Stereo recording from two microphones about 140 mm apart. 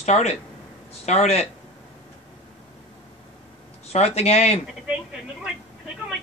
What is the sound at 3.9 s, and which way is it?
Speech, 50° left (ahead or behind).